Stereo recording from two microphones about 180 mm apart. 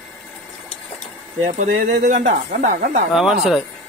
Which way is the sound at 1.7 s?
60° right (ahead or behind).